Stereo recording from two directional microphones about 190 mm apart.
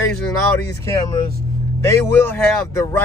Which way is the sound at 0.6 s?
15° left (ahead or behind).